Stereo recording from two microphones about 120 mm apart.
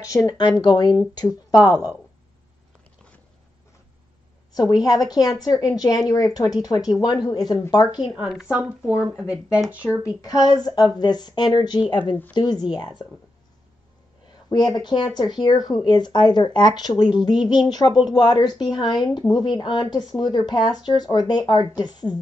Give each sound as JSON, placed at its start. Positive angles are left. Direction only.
{"t": 0.0, "sound": "speech", "side_deg": 30}
{"t": 4.5, "sound": "speech", "side_deg": 35}
{"t": 8.2, "sound": "a woman's voice", "side_deg": 0}
{"t": 8.5, "sound": "speech", "side_deg": -15}
{"t": 10.2, "sound": "speech", "side_deg": 30}
{"t": 14.5, "sound": "speech", "side_deg": 35}